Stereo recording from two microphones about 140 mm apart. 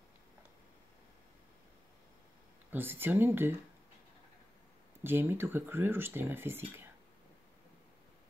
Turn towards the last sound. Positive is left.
turn(degrees=-15)  # may be behind; listen again after turning